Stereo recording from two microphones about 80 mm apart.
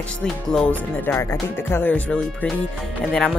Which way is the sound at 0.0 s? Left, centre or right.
Centre.